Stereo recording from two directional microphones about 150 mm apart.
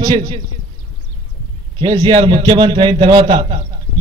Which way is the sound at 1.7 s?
30° right (ahead or behind).